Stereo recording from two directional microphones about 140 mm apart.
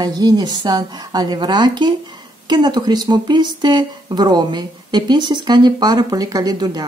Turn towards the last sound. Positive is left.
turn(degrees=-30)  # may be behind; listen again after turning